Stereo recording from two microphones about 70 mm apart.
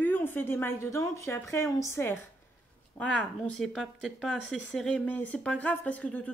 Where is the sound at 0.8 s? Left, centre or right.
Left.